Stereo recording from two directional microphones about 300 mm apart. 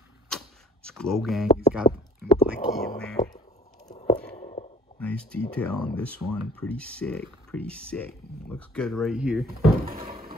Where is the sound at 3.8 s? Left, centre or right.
Centre.